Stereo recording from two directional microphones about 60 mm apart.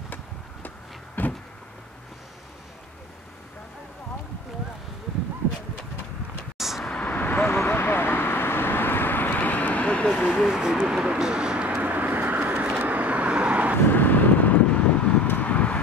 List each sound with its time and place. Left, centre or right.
1.2 s a sound: left
6.6 s vehicle: centre
6.9 s vehicle: left
10.3 s vehicle: centre
13.8 s vehicle: left